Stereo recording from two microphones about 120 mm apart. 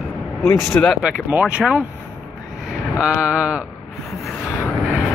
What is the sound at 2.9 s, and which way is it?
Speech, 10° right (ahead or behind).